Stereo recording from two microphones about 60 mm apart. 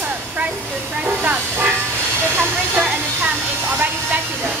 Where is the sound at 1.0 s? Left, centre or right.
Right.